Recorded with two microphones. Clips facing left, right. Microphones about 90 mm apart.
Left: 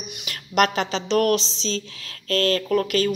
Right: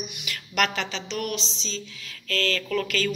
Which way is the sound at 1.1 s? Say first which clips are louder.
Left 12 dB; 50° left (ahead or behind).